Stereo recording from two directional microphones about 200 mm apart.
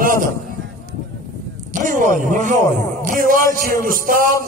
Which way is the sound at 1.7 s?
40° right (ahead or behind).